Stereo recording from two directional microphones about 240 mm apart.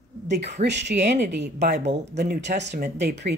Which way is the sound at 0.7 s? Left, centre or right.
Right.